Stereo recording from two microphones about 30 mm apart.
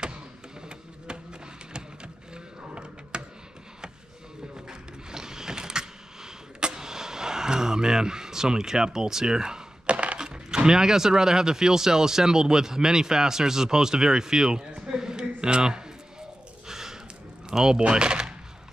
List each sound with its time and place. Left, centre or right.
0.0 s music: right
2.3 s a sound: right
4.6 s a sound: right
9.8 s coin: right
10.1 s coin: right
10.7 s speech: centre
16.6 s a sound: centre
17.6 s speech: centre
17.8 s speech: right